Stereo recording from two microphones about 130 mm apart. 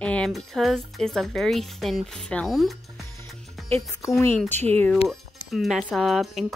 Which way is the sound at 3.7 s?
25° left (ahead or behind).